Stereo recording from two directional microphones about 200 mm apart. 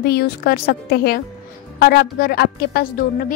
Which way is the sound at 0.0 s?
50° left (ahead or behind).